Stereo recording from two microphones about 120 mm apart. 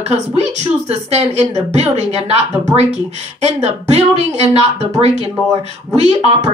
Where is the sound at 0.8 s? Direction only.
65° right (ahead or behind).